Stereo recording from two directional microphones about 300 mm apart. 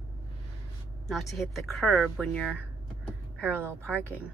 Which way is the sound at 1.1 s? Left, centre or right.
Centre.